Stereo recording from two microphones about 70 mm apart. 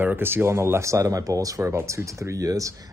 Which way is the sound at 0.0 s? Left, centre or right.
Right.